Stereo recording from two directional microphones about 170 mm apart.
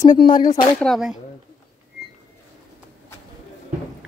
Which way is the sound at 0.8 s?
Centre (ahead or behind).